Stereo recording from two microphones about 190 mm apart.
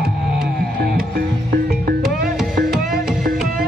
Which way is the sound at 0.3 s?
55° right (ahead or behind).